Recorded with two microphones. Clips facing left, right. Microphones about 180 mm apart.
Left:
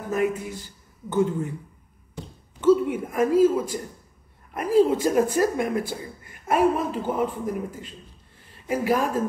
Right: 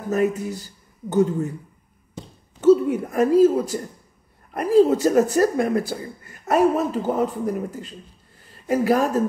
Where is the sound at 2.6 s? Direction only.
40° right (ahead or behind).